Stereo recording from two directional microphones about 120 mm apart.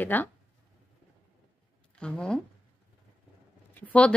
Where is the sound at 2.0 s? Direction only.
10° left (ahead or behind).